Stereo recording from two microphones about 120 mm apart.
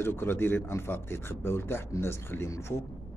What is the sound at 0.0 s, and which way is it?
Speech, 20° left (ahead or behind).